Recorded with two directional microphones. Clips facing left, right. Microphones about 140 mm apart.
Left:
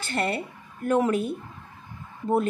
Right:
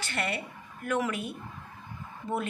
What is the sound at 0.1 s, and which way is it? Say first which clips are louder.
A woman's voice: left 7 dB; 30° left (ahead or behind).